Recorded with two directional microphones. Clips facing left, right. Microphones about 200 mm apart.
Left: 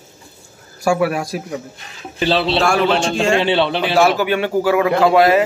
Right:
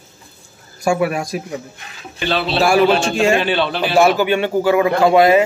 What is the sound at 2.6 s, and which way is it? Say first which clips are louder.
Speech: right 2 dB; 5° right (ahead or behind).